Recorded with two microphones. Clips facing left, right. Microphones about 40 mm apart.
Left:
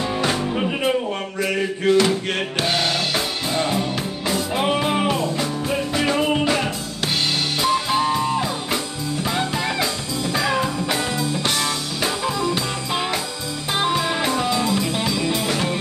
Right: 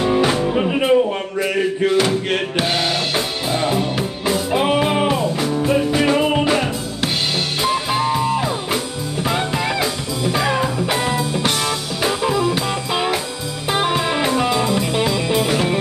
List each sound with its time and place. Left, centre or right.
0.0 s music: right
0.3 s music: centre
7.6 s music: centre